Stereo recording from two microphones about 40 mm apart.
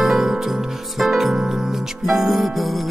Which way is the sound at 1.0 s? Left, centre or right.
Centre.